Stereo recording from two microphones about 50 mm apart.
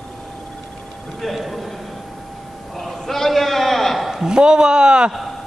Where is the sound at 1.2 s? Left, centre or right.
Centre.